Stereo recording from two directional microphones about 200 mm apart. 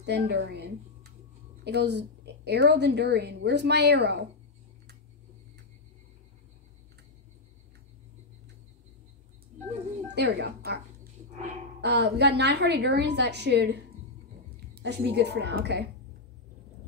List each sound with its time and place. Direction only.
0.0 s a woman's voice: 55° right (ahead or behind)
10.1 s a woman's voice: 55° right (ahead or behind)
11.8 s a woman's voice: 55° right (ahead or behind)